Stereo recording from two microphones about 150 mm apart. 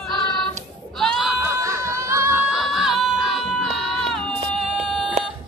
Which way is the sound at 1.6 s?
20° right (ahead or behind).